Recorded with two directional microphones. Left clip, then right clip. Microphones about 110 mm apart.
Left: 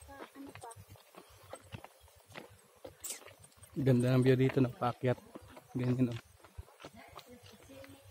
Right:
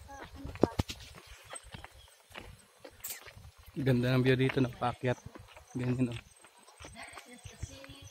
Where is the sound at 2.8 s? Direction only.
20° left (ahead or behind).